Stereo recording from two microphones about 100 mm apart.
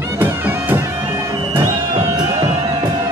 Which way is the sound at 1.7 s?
30° right (ahead or behind).